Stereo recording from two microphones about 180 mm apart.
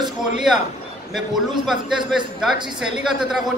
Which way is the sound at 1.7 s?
5° right (ahead or behind).